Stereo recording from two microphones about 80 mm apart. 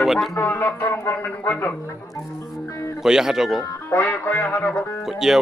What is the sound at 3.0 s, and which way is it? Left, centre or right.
Speech, centre.